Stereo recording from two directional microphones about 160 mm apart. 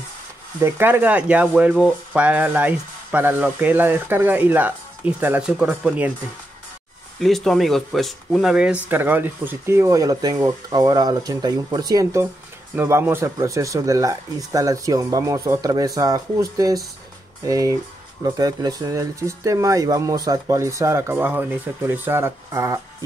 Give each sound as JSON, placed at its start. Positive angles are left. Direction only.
{"t": 0.6, "sound": "speech", "side_deg": -15}
{"t": 7.2, "sound": "speech", "side_deg": 0}